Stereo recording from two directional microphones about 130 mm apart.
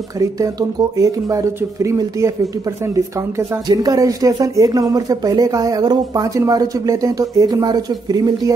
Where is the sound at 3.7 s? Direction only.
30° right (ahead or behind).